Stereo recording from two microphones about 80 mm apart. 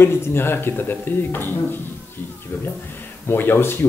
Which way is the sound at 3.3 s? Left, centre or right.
Left.